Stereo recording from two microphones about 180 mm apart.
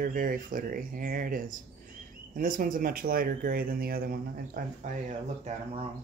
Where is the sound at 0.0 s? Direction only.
50° right (ahead or behind).